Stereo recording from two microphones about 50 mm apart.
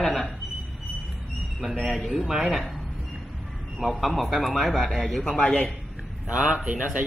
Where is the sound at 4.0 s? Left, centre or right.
Centre.